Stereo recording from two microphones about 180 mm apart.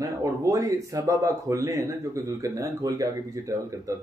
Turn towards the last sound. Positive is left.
turn(degrees=-20)  # may be behind; listen again after turning